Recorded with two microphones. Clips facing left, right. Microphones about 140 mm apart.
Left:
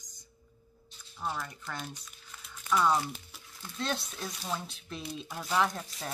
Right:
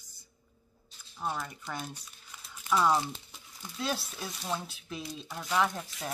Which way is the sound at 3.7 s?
5° right (ahead or behind).